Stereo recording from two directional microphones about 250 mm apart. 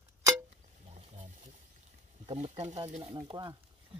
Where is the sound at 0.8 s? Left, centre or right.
Right.